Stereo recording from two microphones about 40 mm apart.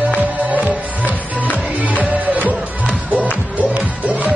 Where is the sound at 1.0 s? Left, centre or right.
Left.